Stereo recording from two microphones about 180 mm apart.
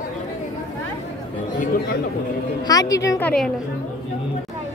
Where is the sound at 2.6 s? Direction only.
20° left (ahead or behind).